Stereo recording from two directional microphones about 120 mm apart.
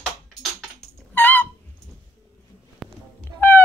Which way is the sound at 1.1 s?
15° left (ahead or behind).